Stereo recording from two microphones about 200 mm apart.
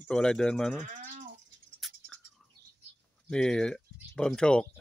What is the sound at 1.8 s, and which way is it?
Scratch, centre (ahead or behind).